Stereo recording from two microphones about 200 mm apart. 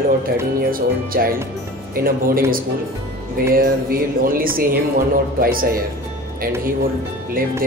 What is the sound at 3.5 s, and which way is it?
Speech, 45° right (ahead or behind).